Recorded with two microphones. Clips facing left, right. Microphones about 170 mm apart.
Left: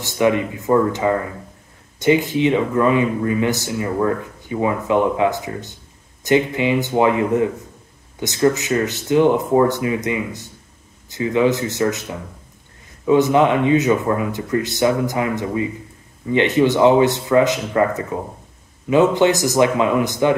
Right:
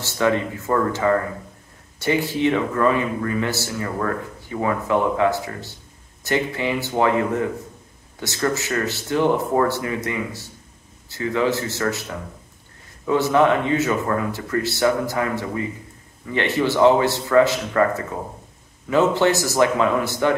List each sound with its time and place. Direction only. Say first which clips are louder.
0.0 s speech: left 3 dB; 15° left (ahead or behind)